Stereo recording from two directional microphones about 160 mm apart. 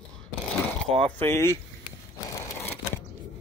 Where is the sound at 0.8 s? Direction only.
5° left (ahead or behind).